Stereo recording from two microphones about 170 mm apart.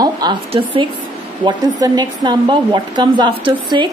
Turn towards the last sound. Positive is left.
turn(degrees=-25)  # may be behind; listen again after turning